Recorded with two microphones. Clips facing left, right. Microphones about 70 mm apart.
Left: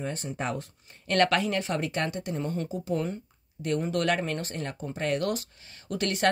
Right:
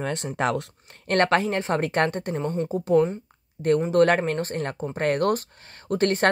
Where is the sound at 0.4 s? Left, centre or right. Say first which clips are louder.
Right 9 dB; right.